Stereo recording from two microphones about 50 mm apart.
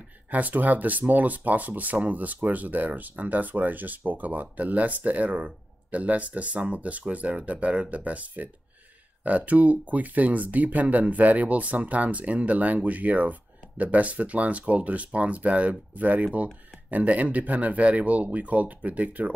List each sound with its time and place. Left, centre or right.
0.3 s speech: right